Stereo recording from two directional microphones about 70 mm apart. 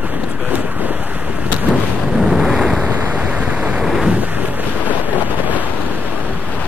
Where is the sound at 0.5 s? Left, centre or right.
Right.